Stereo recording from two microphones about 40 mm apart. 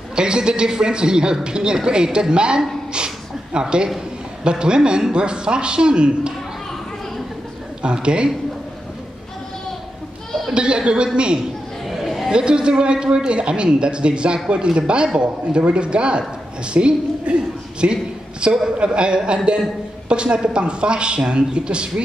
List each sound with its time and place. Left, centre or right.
0.1 s a man's voice: right
7.8 s a man's voice: right
10.5 s a man's voice: right
11.9 s chatter: centre
12.3 s a man's voice: right